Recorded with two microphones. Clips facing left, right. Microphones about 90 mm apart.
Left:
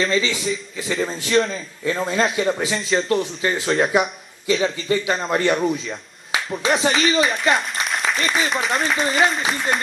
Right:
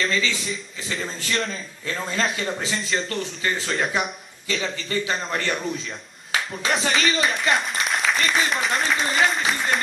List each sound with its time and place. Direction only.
0.0 s speech: centre (ahead or behind)
1.9 s speech: 15° left (ahead or behind)
2.8 s speech: centre (ahead or behind)
3.1 s speech: 10° left (ahead or behind)
4.8 s speech: 10° left (ahead or behind)
5.9 s speech: 5° left (ahead or behind)